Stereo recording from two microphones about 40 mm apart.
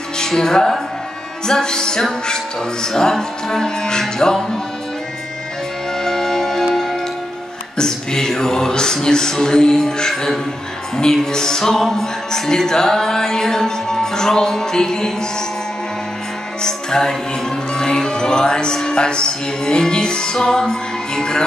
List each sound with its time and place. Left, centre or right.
0.2 s music: centre
5.9 s music: centre
6.6 s music: centre
7.7 s a sound: centre
9.0 s music: centre
16.6 s music: centre